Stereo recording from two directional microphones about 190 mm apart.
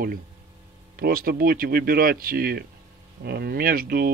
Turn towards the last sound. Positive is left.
turn(degrees=-50)  # may be behind; listen again after turning